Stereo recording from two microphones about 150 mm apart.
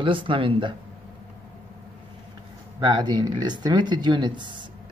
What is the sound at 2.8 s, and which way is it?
Speech, 30° right (ahead or behind).